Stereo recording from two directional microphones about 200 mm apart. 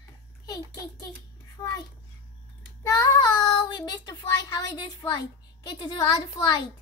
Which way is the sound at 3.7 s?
20° left (ahead or behind).